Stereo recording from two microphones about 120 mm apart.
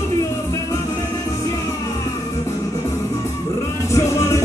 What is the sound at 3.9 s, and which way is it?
Music, 25° left (ahead or behind).